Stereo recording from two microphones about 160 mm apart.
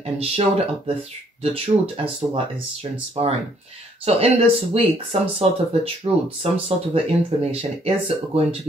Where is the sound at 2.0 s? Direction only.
35° right (ahead or behind).